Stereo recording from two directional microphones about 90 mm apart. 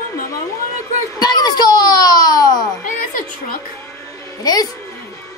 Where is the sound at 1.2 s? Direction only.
50° left (ahead or behind).